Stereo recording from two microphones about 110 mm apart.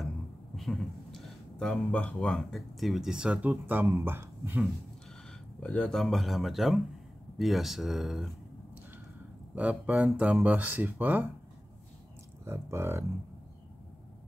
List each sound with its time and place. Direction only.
0.6 s speech: centre (ahead or behind); by 4.6 s 20° right (ahead or behind)
5.6 s speech: 10° left (ahead or behind)
9.6 s speech: 10° right (ahead or behind)
12.4 s speech: 25° right (ahead or behind)